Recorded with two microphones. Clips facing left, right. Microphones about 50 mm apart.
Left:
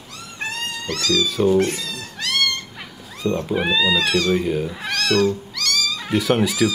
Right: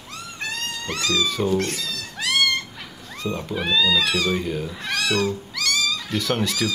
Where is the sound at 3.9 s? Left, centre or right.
Centre.